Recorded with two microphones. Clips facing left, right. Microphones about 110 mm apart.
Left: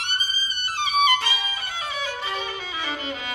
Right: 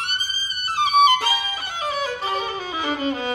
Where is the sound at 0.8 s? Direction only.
40° right (ahead or behind).